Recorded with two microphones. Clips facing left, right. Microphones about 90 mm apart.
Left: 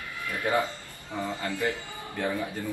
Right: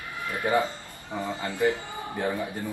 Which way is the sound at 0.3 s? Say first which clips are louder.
Right 2 dB; 20° right (ahead or behind).